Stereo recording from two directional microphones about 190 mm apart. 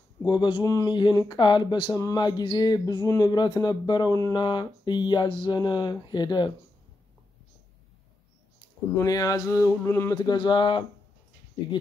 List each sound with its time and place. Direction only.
0.2 s speech: 25° left (ahead or behind)
8.9 s speech: 20° left (ahead or behind)